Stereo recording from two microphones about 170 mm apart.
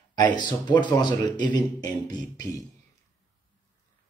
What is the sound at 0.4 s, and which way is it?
A man's voice, 25° left (ahead or behind).